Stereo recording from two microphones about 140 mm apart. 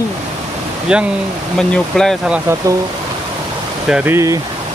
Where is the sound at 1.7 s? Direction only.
5° left (ahead or behind).